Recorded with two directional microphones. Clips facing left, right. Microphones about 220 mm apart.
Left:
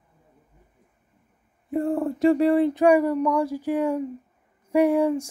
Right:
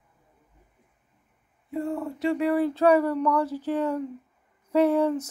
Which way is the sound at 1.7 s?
50° left (ahead or behind).